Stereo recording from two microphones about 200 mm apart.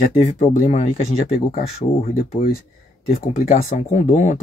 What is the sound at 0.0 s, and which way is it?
Speech, 35° left (ahead or behind).